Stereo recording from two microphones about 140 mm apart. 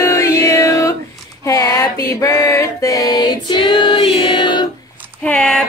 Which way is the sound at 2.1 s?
20° left (ahead or behind).